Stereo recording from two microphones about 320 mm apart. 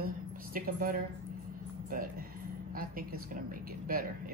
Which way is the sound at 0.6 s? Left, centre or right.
Right.